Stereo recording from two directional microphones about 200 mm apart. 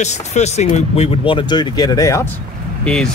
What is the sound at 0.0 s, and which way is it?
Speech, 35° left (ahead or behind).